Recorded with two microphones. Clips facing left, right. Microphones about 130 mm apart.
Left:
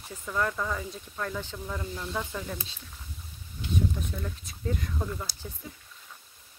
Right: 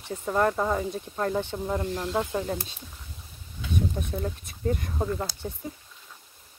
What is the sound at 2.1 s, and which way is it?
Speech, 35° right (ahead or behind).